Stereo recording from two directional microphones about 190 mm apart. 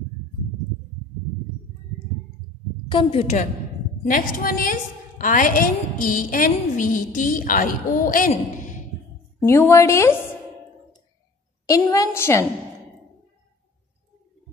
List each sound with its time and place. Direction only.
2.9 s a woman's voice: 30° left (ahead or behind)
4.1 s a woman's voice: 50° left (ahead or behind)
9.4 s speech: 15° left (ahead or behind)
11.6 s speech: 15° left (ahead or behind)